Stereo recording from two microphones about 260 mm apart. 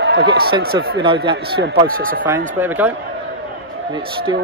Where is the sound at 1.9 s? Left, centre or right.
Right.